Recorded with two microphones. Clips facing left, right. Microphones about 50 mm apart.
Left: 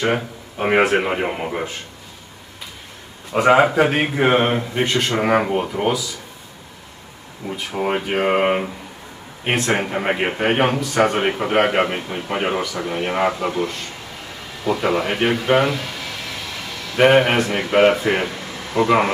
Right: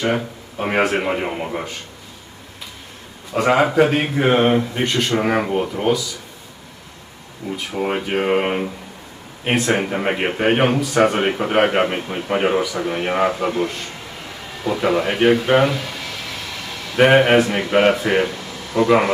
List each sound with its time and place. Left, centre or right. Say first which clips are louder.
0.0 s speech: even; centre
3.3 s speech: left 1 dB; centre
7.4 s a man's voice: even; centre
13.4 s a man's voice: right 2 dB; centre
14.6 s speech: right 1 dB; centre
18.2 s air conditioning: right 2 dB; left